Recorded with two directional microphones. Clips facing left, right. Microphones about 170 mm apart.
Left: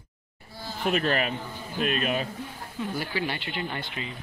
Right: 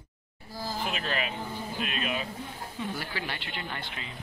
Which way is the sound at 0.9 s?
50° left (ahead or behind).